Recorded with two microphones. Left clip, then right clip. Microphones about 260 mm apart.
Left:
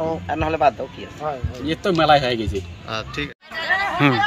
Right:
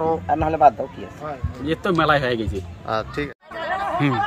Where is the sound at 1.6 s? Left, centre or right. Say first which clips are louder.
Left 2 dB; centre.